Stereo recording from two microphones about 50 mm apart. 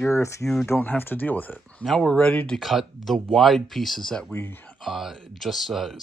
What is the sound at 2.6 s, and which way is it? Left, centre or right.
Speech, centre.